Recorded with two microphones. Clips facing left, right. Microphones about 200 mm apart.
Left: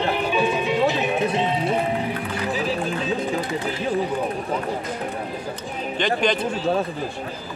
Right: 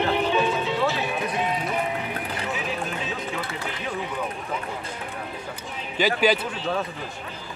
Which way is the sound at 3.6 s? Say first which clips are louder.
Left 7 dB; 35° left (ahead or behind).